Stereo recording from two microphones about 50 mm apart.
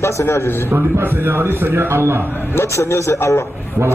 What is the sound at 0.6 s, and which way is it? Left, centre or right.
A man's voice, right.